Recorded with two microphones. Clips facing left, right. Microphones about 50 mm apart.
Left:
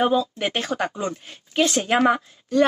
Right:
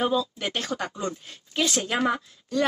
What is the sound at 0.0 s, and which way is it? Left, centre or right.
Speech, left.